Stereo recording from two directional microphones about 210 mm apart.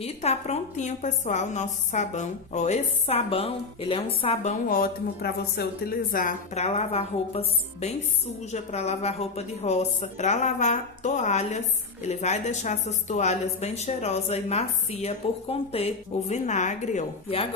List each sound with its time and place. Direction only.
0.0 s a woman's voice: 30° left (ahead or behind)